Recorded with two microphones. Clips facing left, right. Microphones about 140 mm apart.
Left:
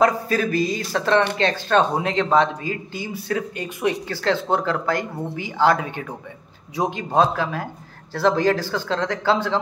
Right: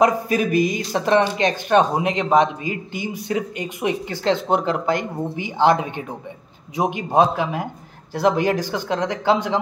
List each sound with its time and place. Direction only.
0.0 s speech: 15° right (ahead or behind)